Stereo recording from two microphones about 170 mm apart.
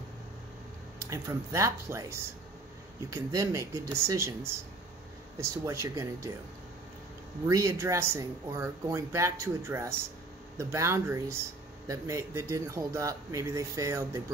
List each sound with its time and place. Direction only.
1.1 s speech: 15° right (ahead or behind)
7.4 s speech: 15° right (ahead or behind)